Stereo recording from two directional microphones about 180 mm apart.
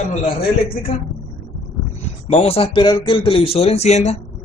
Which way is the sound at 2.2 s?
35° left (ahead or behind).